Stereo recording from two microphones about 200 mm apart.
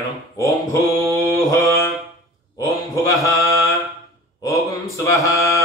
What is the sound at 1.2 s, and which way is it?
Mantra, 15° left (ahead or behind).